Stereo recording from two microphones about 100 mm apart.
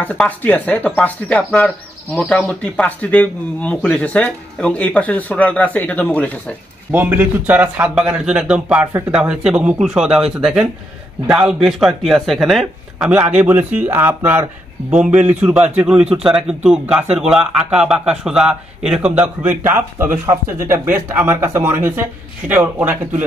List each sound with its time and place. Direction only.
0.4 s speech: 15° left (ahead or behind)
6.9 s a man's voice: 20° right (ahead or behind); by 13.1 s centre (ahead or behind)
13.1 s a man's voice: 15° right (ahead or behind)